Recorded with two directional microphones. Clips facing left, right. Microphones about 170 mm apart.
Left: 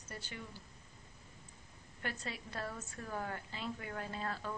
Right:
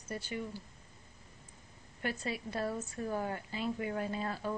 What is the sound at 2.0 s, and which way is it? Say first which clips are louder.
Speech: right 6 dB; 15° right (ahead or behind).